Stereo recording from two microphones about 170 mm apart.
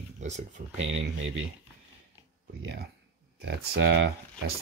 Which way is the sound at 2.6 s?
80° right.